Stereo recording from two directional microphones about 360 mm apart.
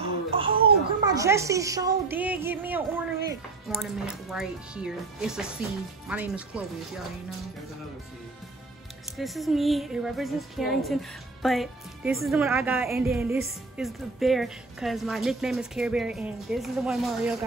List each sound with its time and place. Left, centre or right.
0.0 s a sound: centre
1.0 s a woman's voice: centre
9.1 s speech: centre